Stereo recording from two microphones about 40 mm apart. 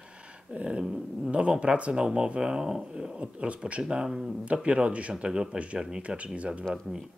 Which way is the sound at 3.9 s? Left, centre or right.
Centre.